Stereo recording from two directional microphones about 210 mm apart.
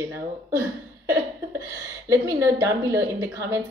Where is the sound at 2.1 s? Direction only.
15° right (ahead or behind).